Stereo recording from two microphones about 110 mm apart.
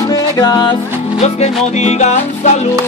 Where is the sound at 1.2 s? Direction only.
80° left.